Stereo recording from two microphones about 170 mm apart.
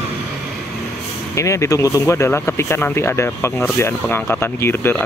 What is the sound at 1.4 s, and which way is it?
Speech, 15° left (ahead or behind).